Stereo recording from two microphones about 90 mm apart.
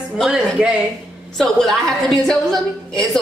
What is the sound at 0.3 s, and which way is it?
Speech, 10° right (ahead or behind).